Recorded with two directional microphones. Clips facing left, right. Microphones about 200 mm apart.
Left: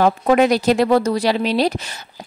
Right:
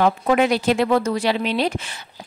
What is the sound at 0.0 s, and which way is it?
A woman's voice, 40° left (ahead or behind).